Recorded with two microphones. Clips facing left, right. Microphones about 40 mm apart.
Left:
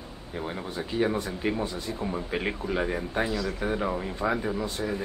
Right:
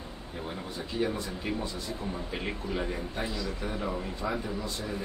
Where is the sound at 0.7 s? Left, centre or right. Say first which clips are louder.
Left 5 dB; left.